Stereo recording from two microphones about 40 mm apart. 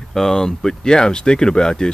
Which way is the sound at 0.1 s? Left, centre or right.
Centre.